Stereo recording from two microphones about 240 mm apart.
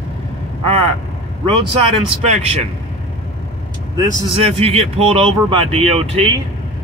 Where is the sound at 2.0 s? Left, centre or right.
Right.